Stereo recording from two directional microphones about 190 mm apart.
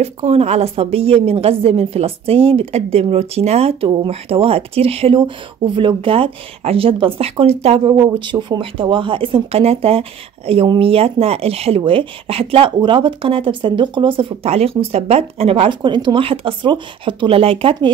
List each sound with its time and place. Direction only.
0.0 s a woman's voice: 35° right (ahead or behind)